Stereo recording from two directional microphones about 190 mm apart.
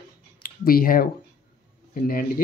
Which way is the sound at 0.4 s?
50° left (ahead or behind).